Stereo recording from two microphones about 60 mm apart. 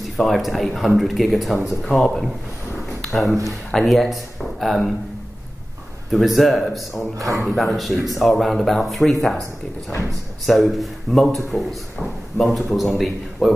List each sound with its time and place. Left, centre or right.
0.2 s a man's voice: centre
6.1 s a man's voice: centre
7.2 s speech: right
7.4 s a man's voice: centre